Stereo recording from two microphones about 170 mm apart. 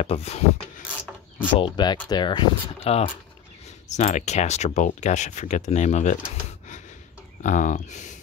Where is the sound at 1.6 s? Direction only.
25° left (ahead or behind); by 6.1 s 45° left (ahead or behind).